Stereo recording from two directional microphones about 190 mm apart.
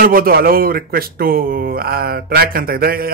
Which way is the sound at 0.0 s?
50° right (ahead or behind).